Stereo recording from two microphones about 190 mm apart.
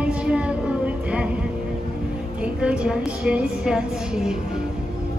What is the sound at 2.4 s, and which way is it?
A woman's voice, 5° right (ahead or behind).